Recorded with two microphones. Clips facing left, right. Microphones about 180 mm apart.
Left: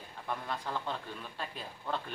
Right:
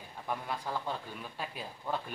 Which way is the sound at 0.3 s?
10° right (ahead or behind).